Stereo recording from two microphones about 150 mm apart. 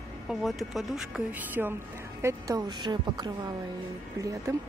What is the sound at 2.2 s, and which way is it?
A woman's voice, 25° right (ahead or behind).